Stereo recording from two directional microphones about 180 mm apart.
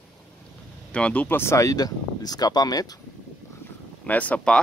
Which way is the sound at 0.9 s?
5° left (ahead or behind).